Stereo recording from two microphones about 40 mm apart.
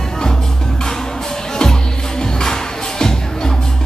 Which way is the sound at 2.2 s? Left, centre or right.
Centre.